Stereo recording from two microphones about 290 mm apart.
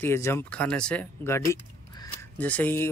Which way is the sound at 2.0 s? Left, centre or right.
Centre.